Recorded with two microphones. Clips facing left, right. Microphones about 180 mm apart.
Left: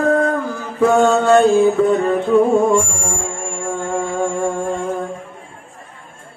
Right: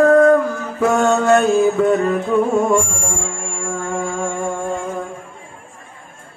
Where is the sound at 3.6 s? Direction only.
30° left (ahead or behind).